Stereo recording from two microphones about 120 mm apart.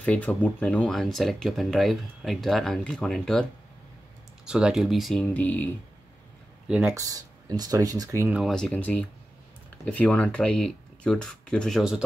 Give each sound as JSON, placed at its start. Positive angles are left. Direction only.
{"t": 0.0, "sound": "speech", "side_deg": 10}
{"t": 4.5, "sound": "speech", "side_deg": -5}
{"t": 6.8, "sound": "speech", "side_deg": -25}
{"t": 8.3, "sound": "speech", "side_deg": -5}
{"t": 8.7, "sound": "speech", "side_deg": 10}